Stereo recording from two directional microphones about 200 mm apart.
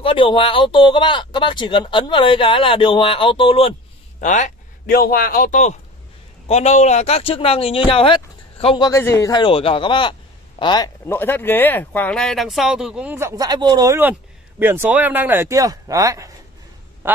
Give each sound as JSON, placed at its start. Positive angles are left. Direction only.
{"t": 0.0, "sound": "speech", "side_deg": 25}
{"t": 4.2, "sound": "speech", "side_deg": 40}
{"t": 11.1, "sound": "speech", "side_deg": 10}
{"t": 13.4, "sound": "speech", "side_deg": -20}
{"t": 17.0, "sound": "quack", "side_deg": -10}